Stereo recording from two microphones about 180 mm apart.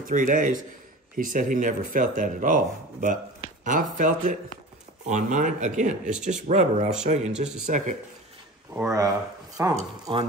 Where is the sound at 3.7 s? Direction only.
45° right (ahead or behind).